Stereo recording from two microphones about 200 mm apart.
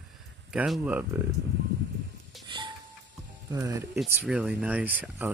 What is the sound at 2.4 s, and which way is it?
Music, 25° right (ahead or behind).